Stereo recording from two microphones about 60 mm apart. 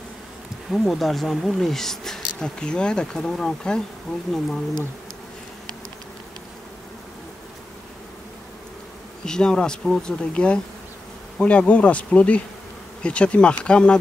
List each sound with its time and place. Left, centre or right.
0.7 s insect: centre
9.2 s insect: centre
11.4 s bee: left